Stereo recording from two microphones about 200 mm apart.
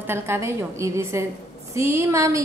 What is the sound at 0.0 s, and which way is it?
A woman's voice, 10° right (ahead or behind).